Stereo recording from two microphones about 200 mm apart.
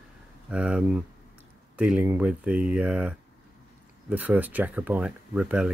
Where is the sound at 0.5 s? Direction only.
5° right (ahead or behind).